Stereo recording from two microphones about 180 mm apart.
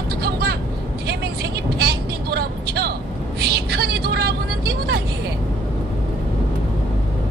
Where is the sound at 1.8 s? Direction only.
60° right (ahead or behind).